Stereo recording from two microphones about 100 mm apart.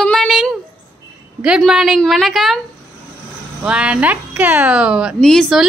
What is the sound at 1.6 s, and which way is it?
A woman's voice, centre (ahead or behind).